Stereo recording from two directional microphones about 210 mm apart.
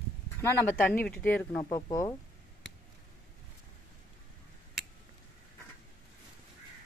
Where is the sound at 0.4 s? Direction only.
10° left (ahead or behind).